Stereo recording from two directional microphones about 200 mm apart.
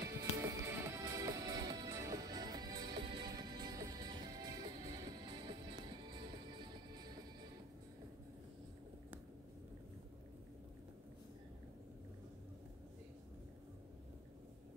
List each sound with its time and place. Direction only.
0.0 s music: 15° right (ahead or behind)